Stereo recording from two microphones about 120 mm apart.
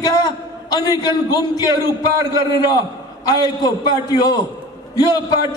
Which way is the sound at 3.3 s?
35° left (ahead or behind).